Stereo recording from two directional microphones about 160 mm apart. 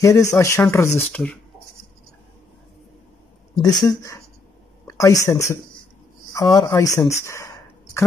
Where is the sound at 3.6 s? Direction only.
25° left (ahead or behind).